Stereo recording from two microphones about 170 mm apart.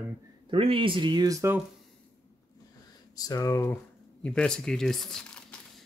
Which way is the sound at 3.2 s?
20° left (ahead or behind).